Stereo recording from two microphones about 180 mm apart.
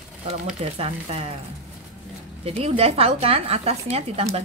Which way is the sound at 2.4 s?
35° right (ahead or behind).